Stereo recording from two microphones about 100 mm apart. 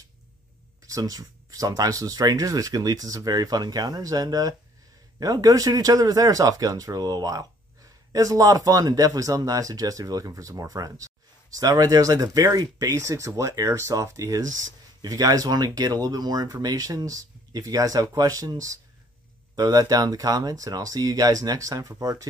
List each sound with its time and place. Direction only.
0.8 s speech: 35° right (ahead or behind)